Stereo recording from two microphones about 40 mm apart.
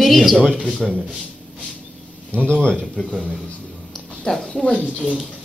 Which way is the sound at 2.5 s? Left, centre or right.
Centre.